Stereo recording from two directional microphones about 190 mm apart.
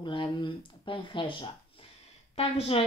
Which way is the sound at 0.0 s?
25° left (ahead or behind).